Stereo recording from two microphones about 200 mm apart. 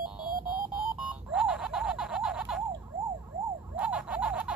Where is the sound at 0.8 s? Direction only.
5° right (ahead or behind).